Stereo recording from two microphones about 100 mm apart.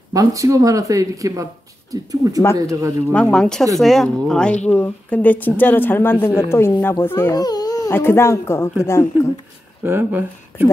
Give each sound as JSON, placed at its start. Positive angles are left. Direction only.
{"t": 0.1, "sound": "speech", "side_deg": -35}
{"t": 3.1, "sound": "a woman's voice", "side_deg": 10}
{"t": 7.3, "sound": "babbling", "side_deg": 40}
{"t": 7.9, "sound": "a woman's voice", "side_deg": 25}
{"t": 9.8, "sound": "speech", "side_deg": -20}